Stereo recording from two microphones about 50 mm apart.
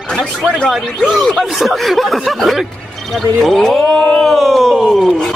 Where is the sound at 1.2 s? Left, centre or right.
Centre.